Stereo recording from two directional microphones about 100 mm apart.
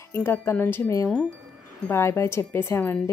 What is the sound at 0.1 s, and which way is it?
A woman's voice, 25° left (ahead or behind).